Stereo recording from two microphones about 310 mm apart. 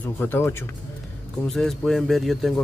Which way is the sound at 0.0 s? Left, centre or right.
Centre.